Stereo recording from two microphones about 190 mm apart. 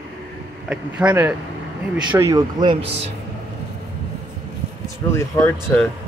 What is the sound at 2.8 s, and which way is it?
Speech, 65° right (ahead or behind).